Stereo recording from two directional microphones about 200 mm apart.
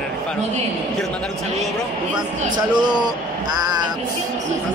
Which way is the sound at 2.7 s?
20° right (ahead or behind).